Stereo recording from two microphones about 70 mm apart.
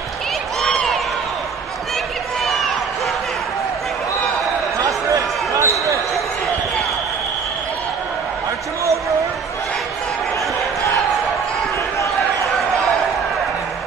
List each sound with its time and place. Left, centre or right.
0.6 s run: centre
4.7 s a sound: right
5.6 s basketball bounce: right